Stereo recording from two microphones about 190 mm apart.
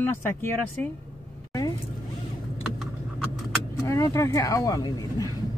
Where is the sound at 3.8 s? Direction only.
15° left (ahead or behind).